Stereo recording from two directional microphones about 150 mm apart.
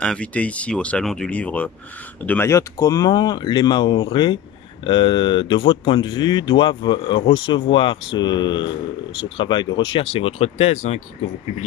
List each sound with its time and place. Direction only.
0.0 s speech: 5° left (ahead or behind); by 11.0 s 45° left (ahead or behind)